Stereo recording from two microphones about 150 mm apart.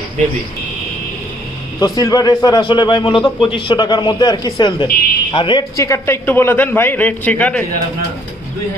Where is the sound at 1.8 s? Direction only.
25° left (ahead or behind).